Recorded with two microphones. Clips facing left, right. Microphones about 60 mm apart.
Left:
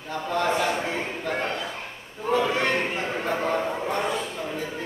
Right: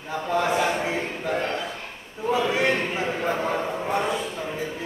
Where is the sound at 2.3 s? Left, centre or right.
Centre.